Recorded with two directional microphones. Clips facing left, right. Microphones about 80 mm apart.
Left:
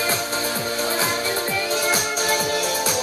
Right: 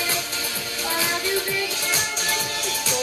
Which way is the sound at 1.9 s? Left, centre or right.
Centre.